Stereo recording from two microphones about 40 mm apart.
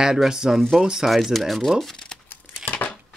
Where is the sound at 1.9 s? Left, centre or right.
Centre.